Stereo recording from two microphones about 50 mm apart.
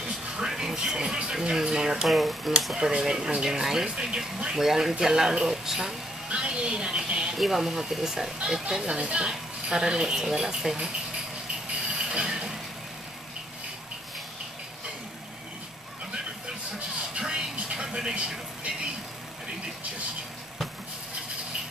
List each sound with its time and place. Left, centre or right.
0.0 s speech: centre
2.0 s speech: centre
7.3 s speech: centre
11.8 s vehicle: centre
17.2 s television: centre